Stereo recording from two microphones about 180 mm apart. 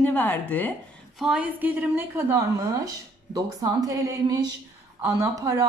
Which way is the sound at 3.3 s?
20° right (ahead or behind).